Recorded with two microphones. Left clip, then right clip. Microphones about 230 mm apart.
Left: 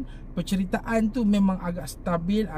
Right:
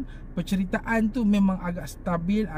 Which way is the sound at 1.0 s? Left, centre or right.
Centre.